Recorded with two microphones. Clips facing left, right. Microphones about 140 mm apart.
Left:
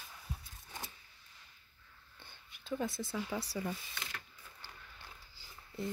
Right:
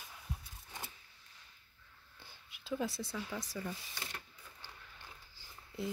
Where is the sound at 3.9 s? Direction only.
30° right (ahead or behind).